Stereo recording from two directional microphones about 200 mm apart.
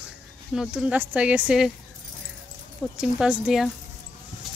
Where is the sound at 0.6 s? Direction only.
5° right (ahead or behind).